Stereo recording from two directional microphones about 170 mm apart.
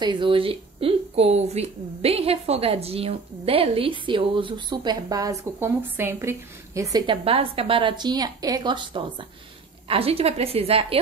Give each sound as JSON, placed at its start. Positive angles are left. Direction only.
{"t": 0.0, "sound": "speech", "side_deg": -30}
{"t": 7.2, "sound": "a woman's voice", "side_deg": -35}